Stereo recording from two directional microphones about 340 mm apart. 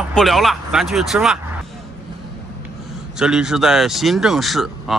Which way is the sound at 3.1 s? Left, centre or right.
Centre.